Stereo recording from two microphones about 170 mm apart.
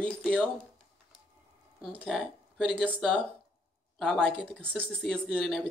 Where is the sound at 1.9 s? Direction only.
5° left (ahead or behind).